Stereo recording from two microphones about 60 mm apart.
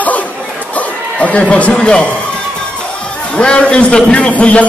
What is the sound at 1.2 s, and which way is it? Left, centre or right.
Speech, centre.